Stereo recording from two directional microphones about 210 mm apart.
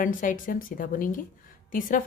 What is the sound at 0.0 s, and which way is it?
A woman's voice, 40° left (ahead or behind).